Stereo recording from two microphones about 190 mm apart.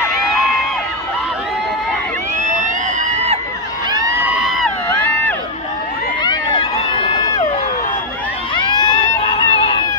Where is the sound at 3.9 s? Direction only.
20° right (ahead or behind).